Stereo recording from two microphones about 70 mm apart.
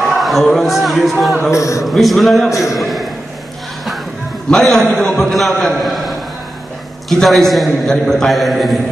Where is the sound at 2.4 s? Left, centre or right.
Left.